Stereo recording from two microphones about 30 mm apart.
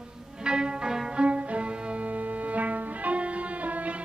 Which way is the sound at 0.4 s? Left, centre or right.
Right.